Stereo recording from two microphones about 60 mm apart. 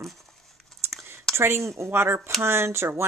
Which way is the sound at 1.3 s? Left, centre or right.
Right.